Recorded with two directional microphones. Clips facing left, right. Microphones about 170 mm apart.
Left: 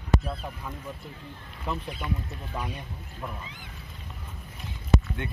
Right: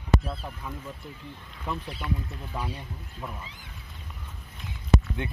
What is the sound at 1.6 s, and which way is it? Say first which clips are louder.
Speech: even; centre (ahead or behind).